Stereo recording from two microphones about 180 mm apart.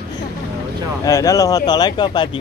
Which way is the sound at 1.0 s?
20° left (ahead or behind).